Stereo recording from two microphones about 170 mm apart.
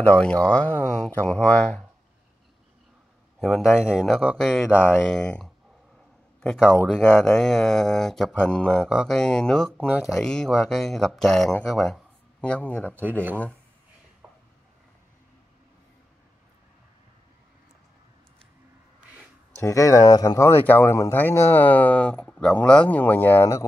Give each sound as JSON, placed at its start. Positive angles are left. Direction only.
{"t": 0.0, "sound": "speech", "side_deg": 5}
{"t": 3.3, "sound": "speech", "side_deg": 0}
{"t": 6.9, "sound": "speech", "side_deg": 5}
{"t": 14.2, "sound": "a sound", "side_deg": -15}
{"t": 19.6, "sound": "speech", "side_deg": 20}